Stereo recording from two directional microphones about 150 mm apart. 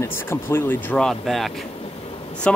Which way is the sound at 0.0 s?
15° left (ahead or behind).